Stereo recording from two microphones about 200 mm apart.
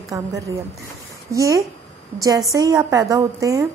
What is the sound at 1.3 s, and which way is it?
A woman's voice, 15° right (ahead or behind).